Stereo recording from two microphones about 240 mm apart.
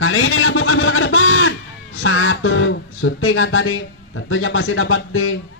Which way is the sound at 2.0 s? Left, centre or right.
Left.